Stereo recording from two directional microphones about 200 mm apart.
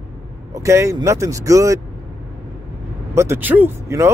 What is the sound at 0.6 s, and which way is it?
Speech, 15° right (ahead or behind).